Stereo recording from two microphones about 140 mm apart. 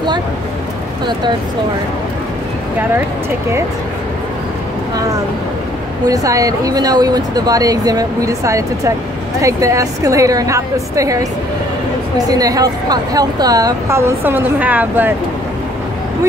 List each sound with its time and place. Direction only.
6.0 s speech: 25° right (ahead or behind)